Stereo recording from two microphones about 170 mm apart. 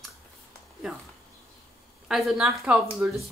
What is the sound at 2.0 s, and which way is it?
Speech, centre (ahead or behind).